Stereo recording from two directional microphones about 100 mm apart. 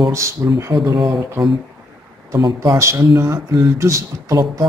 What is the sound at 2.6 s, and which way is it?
Speech, 30° right (ahead or behind).